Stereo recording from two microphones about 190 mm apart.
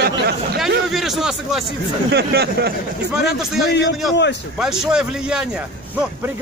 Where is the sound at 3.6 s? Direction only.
65° left (ahead or behind).